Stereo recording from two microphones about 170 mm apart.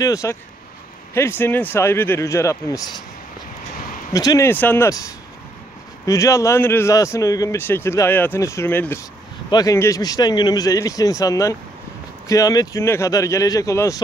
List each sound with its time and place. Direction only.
0.0 s a man's voice: 20° left (ahead or behind)
4.1 s a man's voice: 20° left (ahead or behind)
6.0 s a man's voice: 20° left (ahead or behind)